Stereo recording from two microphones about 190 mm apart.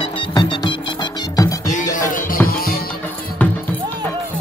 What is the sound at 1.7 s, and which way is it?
Music, 40° left (ahead or behind).